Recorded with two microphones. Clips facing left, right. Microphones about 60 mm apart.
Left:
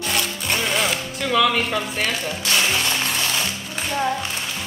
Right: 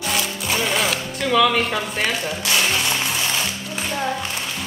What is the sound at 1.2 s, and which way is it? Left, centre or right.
Speech, centre.